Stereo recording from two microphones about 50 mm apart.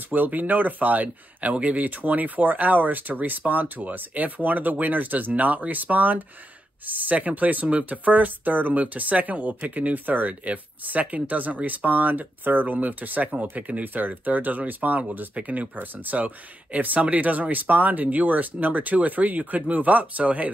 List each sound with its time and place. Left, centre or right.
0.1 s speech: right